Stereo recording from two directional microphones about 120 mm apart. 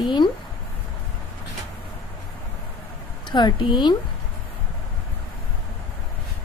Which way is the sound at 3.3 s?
35° left (ahead or behind).